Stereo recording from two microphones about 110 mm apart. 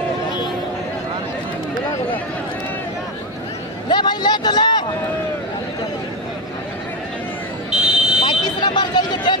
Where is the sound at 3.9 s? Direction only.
40° left (ahead or behind).